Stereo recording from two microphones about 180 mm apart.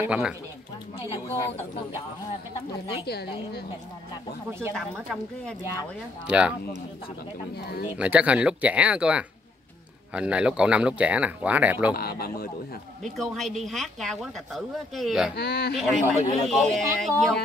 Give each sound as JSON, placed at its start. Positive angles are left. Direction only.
{"t": 0.0, "sound": "speech", "side_deg": -5}
{"t": 1.3, "sound": "speech", "side_deg": 15}
{"t": 3.1, "sound": "speech", "side_deg": 65}
{"t": 4.5, "sound": "speech", "side_deg": -15}
{"t": 6.2, "sound": "speech", "side_deg": -5}
{"t": 8.0, "sound": "speech", "side_deg": -5}
{"t": 11.9, "sound": "speech", "side_deg": 55}
{"t": 13.0, "sound": "speech", "side_deg": 0}
{"t": 15.3, "sound": "speech", "side_deg": 65}
{"t": 15.7, "sound": "speech", "side_deg": 0}